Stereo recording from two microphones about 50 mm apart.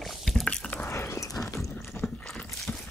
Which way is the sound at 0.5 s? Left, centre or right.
Left.